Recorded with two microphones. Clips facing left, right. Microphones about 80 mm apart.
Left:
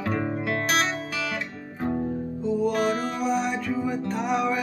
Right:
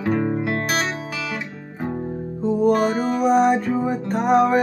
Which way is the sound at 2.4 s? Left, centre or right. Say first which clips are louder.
Right 7 dB; right.